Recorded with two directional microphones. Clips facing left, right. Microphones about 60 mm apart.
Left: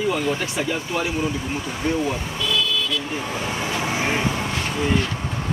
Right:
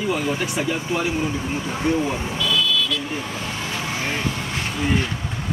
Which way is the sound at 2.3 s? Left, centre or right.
Left.